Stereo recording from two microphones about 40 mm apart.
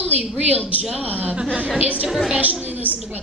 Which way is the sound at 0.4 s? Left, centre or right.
Right.